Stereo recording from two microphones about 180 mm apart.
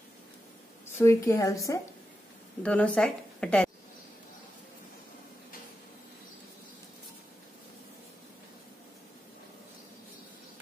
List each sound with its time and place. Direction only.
0.9 s a woman's voice: 15° left (ahead or behind)
2.6 s a woman's voice: 5° left (ahead or behind)